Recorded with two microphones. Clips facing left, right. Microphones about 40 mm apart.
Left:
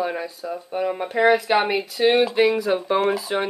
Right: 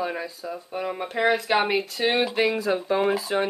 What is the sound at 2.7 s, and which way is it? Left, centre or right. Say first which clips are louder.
Speech: left 2 dB; centre.